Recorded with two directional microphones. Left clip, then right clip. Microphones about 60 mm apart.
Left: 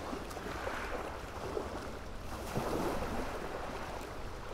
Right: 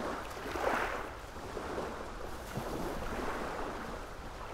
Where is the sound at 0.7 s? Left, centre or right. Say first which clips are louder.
Right 9 dB; right.